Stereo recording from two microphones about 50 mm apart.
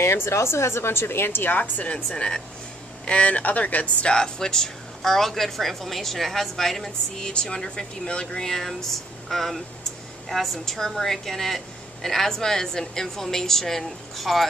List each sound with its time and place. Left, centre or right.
0.0 s a woman's voice: left
2.0 s speech: centre
3.1 s a woman's voice: left; by 14.5 s centre